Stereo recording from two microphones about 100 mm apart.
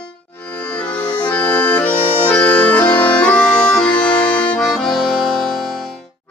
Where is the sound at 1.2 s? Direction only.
10° left (ahead or behind).